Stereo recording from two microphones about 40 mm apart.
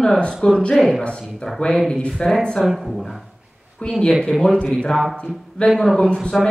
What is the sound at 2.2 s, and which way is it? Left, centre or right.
Speech, left.